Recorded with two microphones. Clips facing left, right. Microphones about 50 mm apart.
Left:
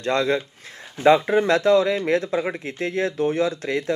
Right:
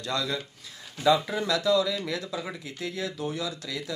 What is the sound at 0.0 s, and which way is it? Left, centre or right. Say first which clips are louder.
Speech: left 9 dB; left.